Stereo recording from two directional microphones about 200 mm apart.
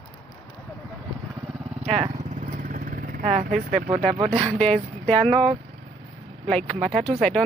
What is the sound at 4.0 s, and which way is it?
Speech, 30° right (ahead or behind).